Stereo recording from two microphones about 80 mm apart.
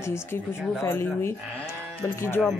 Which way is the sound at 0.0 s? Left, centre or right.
Left.